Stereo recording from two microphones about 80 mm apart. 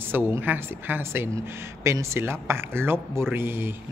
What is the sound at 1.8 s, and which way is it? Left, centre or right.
A man's voice, right.